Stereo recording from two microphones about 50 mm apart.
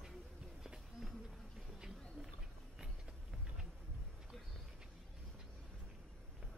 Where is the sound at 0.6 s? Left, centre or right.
Centre.